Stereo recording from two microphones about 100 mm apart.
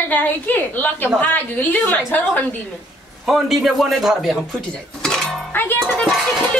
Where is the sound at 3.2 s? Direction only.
Centre (ahead or behind).